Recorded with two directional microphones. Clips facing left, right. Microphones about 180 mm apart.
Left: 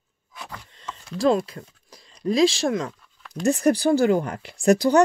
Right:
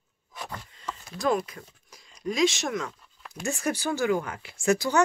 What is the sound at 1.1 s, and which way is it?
Speech, 30° left (ahead or behind).